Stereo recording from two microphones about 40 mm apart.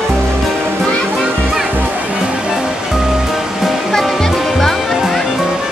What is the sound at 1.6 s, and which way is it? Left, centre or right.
Music, right.